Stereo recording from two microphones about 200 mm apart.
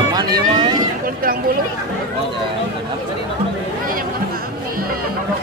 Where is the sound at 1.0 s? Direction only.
45° right (ahead or behind).